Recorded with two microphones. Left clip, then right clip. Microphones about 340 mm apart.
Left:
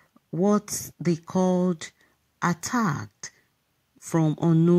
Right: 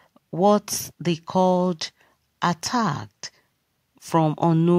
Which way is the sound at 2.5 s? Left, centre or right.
Centre.